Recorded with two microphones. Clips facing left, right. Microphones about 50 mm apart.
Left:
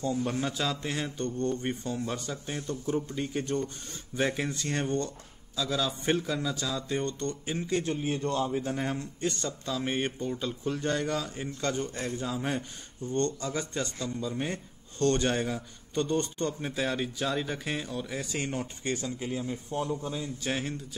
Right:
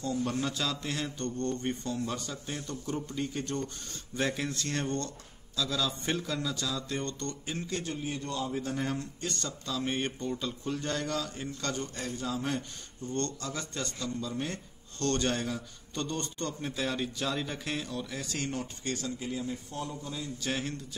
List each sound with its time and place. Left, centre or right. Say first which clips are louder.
0.2 s a man's voice: left 1 dB; centre
8.0 s a man's voice: left 5 dB; left
8.5 s a man's voice: left 2 dB; centre